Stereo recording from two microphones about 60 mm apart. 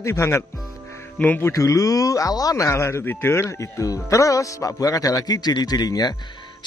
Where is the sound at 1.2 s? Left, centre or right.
Left.